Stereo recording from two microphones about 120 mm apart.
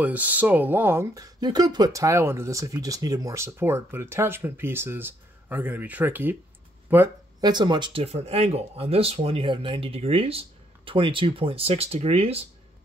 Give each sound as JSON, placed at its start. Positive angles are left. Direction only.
{"t": 0.0, "sound": "speech", "side_deg": -15}
{"t": 7.3, "sound": "speech", "side_deg": -35}
{"t": 8.0, "sound": "speech", "side_deg": -55}
{"t": 10.9, "sound": "speech", "side_deg": -45}